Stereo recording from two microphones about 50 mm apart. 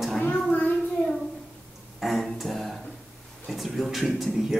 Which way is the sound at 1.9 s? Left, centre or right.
Centre.